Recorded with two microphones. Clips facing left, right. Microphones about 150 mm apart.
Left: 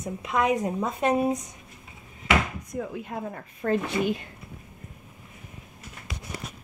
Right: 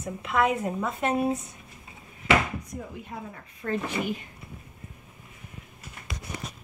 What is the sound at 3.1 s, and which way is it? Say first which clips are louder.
Speech: left 5 dB; 45° left (ahead or behind).